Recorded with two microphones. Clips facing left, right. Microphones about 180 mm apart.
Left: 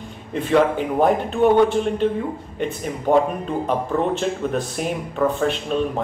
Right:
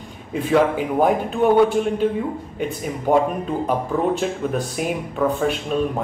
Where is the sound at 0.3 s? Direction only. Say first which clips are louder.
Even; 5° right (ahead or behind).